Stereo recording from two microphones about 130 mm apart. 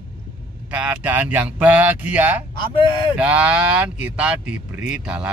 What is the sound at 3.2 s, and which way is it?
Speech, 10° right (ahead or behind).